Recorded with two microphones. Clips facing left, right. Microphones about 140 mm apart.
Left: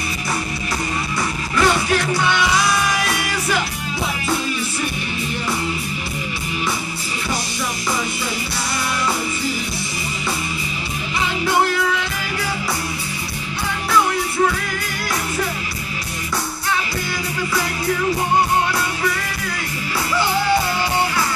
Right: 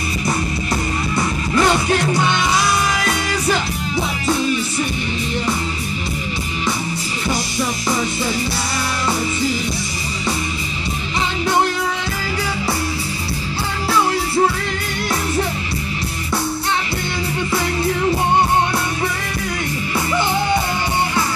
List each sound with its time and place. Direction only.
1.5 s music: 25° right (ahead or behind)